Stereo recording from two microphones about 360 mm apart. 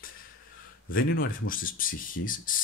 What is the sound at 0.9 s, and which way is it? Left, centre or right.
Speech, left.